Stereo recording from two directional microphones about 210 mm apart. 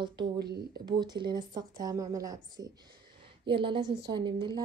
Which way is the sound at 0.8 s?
20° right (ahead or behind).